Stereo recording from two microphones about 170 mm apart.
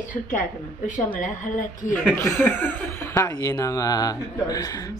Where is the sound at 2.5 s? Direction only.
10° left (ahead or behind).